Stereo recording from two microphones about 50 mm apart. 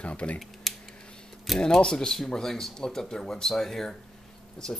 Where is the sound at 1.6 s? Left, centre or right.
Centre.